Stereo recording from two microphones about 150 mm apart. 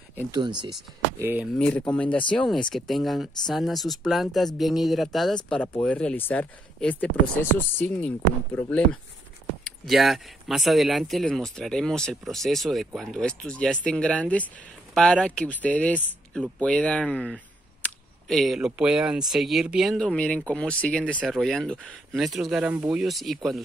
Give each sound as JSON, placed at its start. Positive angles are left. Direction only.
{"t": 0.3, "sound": "speech", "side_deg": -30}
{"t": 1.2, "sound": "speech", "side_deg": -15}
{"t": 1.6, "sound": "speech", "side_deg": 5}
{"t": 9.7, "sound": "speech", "side_deg": 0}